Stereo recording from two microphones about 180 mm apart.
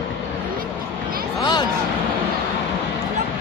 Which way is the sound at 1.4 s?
25° left (ahead or behind).